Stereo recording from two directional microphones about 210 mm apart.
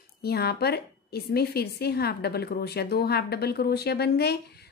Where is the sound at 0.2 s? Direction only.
50° left (ahead or behind).